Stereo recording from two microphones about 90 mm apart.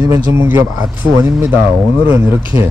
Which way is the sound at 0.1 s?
30° right (ahead or behind).